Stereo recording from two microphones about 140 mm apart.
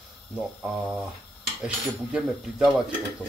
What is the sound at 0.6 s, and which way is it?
Speech, 10° right (ahead or behind).